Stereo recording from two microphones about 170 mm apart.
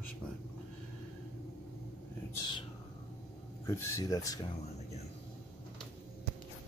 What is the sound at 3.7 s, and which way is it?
Speech, 15° left (ahead or behind).